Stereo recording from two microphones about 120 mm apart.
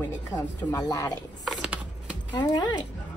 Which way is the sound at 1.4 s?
10° right (ahead or behind).